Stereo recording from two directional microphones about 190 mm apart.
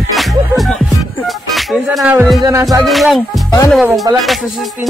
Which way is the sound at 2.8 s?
Centre (ahead or behind).